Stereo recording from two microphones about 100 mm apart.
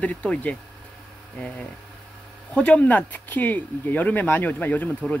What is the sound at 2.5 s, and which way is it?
Speech, 15° left (ahead or behind).